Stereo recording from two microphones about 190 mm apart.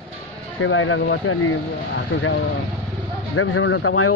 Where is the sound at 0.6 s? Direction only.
90° left.